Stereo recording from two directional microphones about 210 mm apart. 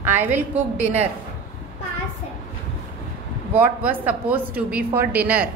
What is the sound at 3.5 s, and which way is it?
A woman's voice, 10° right (ahead or behind).